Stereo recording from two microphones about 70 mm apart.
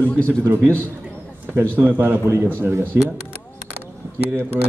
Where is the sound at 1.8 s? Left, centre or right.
Right.